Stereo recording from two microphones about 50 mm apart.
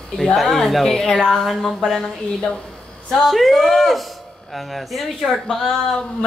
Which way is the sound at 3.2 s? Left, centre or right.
Centre.